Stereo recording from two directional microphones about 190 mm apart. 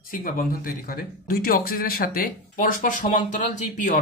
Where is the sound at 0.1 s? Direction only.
45° left (ahead or behind).